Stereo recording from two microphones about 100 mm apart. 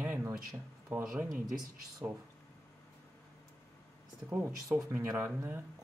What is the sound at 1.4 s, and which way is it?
Speech, 40° right (ahead or behind).